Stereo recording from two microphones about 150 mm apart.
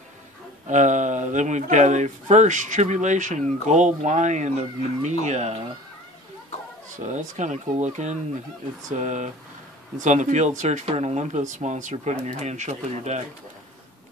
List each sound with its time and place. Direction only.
0.7 s speech: 55° right (ahead or behind)
7.1 s speech: 55° right (ahead or behind)